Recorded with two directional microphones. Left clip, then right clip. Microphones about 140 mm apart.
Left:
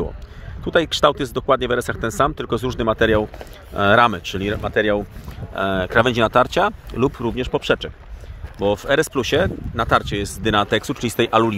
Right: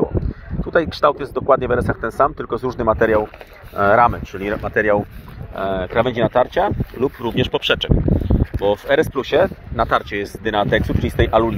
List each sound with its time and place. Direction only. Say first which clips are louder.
0.7 s speech: even; 25° left (ahead or behind)
2.9 s speech: right 2 dB; 55° left (ahead or behind)
3.7 s speech: right 1 dB; 45° left (ahead or behind)
7.3 s speech: right 2 dB; centre (ahead or behind)
8.6 s speech: right 1 dB; 15° left (ahead or behind)
9.8 s speech: left 4 dB; 15° left (ahead or behind)